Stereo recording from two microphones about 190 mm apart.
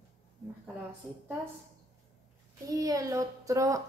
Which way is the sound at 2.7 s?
20° right (ahead or behind).